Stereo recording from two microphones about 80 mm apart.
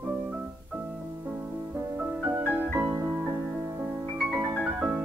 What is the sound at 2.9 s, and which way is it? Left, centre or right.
Music, right.